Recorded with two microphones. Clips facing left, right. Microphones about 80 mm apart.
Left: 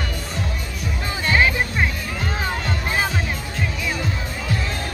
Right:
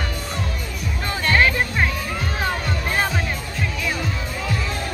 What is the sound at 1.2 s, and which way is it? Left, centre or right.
Music, centre.